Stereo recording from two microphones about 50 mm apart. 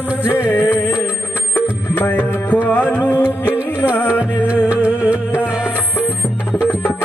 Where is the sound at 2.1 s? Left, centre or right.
Left.